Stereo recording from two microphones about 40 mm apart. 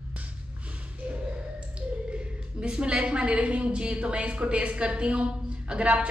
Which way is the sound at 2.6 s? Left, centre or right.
Right.